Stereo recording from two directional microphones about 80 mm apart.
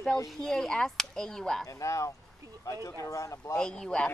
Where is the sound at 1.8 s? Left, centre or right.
Left.